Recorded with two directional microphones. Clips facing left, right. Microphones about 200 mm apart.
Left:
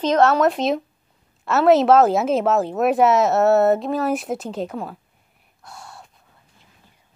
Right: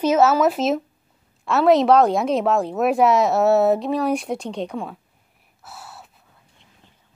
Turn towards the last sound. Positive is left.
turn(degrees=-5)  # may be behind; listen again after turning